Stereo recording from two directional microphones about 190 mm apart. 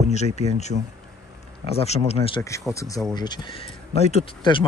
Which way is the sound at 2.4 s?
15° left (ahead or behind).